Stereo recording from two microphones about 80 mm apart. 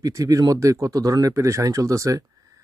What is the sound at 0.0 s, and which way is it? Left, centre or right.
Speech, right.